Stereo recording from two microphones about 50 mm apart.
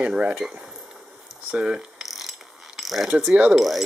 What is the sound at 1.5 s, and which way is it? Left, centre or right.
Speech, right.